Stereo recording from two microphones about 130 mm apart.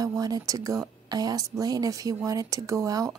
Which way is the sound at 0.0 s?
30° right (ahead or behind).